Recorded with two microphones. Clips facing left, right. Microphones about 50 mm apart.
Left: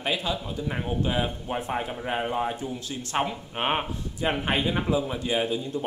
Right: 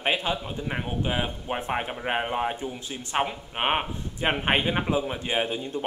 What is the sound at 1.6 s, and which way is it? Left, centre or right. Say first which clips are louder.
Speech: right 1 dB; right.